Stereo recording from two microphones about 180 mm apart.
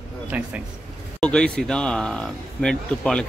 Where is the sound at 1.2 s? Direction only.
5° left (ahead or behind).